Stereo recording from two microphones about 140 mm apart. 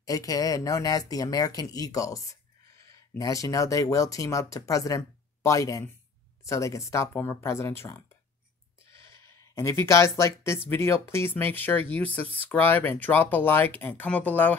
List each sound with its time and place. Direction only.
0.0 s speech: 25° left (ahead or behind)
9.6 s speech: 20° left (ahead or behind)